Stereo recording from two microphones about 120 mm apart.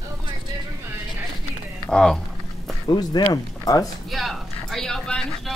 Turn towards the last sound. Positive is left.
turn(degrees=5)  # may be behind; listen again after turning